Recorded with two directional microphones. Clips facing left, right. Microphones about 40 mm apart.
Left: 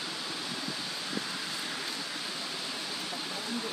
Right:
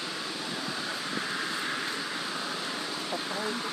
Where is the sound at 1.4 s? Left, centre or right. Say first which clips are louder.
Right 5 dB; right.